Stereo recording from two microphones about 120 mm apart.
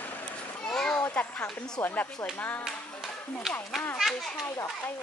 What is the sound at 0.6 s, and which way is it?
A child's voice, 10° left (ahead or behind).